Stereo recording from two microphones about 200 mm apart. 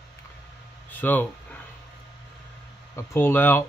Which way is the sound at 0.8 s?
10° left (ahead or behind).